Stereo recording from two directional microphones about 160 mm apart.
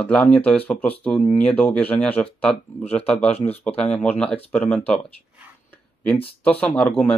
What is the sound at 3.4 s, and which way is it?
Speech, 10° left (ahead or behind).